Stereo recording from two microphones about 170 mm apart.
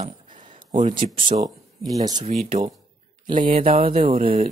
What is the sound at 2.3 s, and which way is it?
Speech, 40° right (ahead or behind).